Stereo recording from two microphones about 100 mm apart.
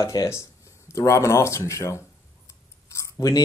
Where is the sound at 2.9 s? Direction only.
35° left (ahead or behind).